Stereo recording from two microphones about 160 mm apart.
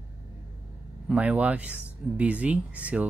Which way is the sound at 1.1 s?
10° right (ahead or behind).